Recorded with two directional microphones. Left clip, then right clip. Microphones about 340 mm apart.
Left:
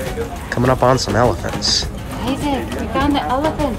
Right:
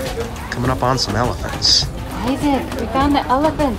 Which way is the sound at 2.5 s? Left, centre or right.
Right.